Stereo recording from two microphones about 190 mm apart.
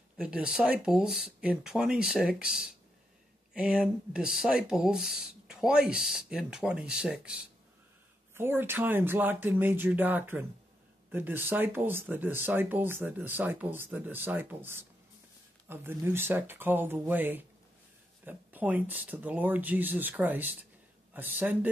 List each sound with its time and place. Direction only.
0.2 s speech: 5° right (ahead or behind)
8.4 s speech: 10° right (ahead or behind)